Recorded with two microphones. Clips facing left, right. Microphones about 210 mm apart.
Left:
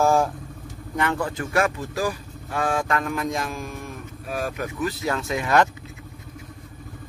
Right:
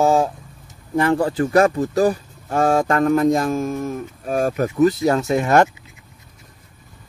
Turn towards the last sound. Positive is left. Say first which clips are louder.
# right 5 dB
turn(degrees=-45)  # may be behind; listen again after turning